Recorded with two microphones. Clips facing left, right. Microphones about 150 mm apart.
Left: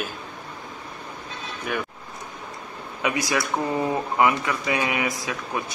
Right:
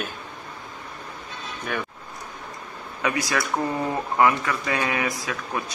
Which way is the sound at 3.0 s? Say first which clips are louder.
Left 1 dB; 20° left (ahead or behind).